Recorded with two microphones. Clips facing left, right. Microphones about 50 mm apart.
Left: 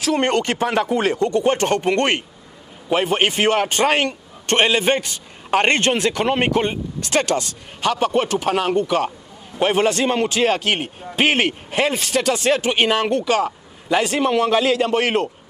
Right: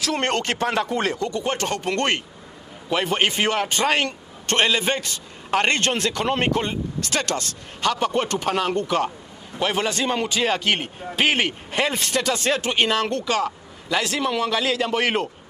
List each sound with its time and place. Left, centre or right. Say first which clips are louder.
0.0 s speech: left 4 dB; centre
1.2 s a man's voice: left 7 dB; left; by 9.1 s centre
9.6 s a man's voice: left 6 dB; left
10.4 s speech: left 3 dB; centre
12.4 s speech: left 4 dB; centre